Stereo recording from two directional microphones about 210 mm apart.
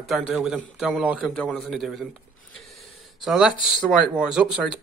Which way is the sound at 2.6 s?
Centre (ahead or behind).